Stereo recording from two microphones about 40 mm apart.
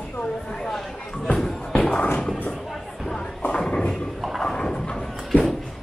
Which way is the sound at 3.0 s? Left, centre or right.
Centre.